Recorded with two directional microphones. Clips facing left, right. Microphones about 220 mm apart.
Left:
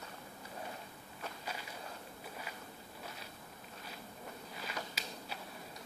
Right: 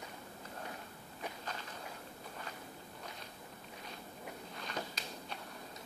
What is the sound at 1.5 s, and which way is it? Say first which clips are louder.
Walk: even; 10° left (ahead or behind).